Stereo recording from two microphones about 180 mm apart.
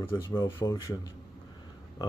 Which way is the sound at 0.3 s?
15° left (ahead or behind).